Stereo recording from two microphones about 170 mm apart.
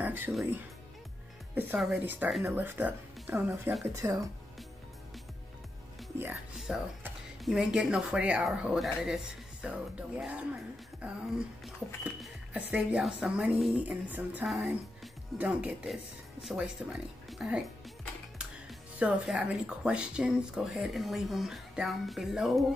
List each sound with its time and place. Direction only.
0.0 s speech: 10° right (ahead or behind)
6.7 s speech: 5° right (ahead or behind)
17.3 s music: 5° right (ahead or behind)
18.4 s speech: 5° right (ahead or behind)